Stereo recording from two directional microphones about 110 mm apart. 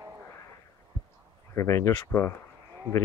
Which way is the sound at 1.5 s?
25° left (ahead or behind).